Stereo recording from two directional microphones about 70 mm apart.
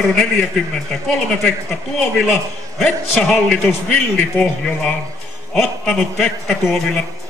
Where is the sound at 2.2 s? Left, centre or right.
Centre.